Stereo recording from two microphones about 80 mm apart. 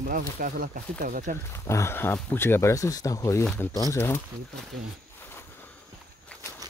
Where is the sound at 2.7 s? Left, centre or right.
Left.